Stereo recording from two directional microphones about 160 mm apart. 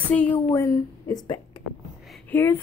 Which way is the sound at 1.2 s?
30° left (ahead or behind).